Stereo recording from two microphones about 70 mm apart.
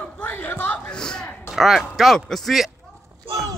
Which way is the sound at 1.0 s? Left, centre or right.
Centre.